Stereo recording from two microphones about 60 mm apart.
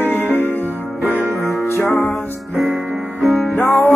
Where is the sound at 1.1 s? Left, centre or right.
Right.